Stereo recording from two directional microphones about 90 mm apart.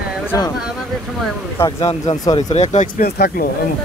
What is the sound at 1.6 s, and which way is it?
Speech, 25° left (ahead or behind).